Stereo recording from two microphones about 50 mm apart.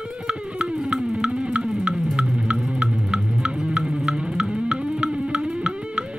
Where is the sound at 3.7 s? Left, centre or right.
Centre.